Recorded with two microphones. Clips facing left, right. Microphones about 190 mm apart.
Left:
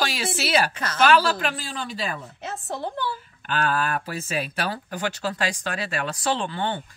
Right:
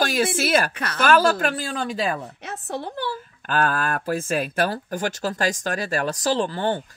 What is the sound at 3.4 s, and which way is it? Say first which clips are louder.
Speech: right 2 dB; 45° right (ahead or behind).